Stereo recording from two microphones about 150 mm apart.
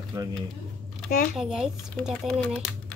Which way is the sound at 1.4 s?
5° right (ahead or behind).